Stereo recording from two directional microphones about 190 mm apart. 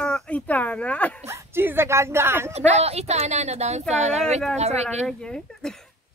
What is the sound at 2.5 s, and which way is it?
Speech, 35° right (ahead or behind).